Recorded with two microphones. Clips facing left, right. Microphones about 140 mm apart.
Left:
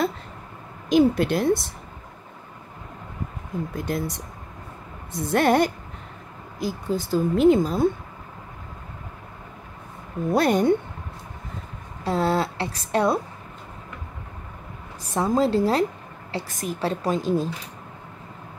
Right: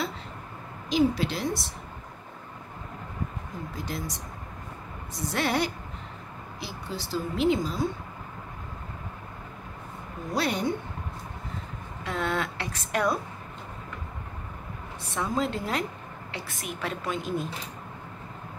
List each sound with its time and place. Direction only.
0.8 s speech: 55° left (ahead or behind)
3.7 s speech: 55° left (ahead or behind)
10.3 s speech: 50° left (ahead or behind)
12.0 s a woman's voice: 35° left (ahead or behind)
15.1 s a woman's voice: 35° left (ahead or behind)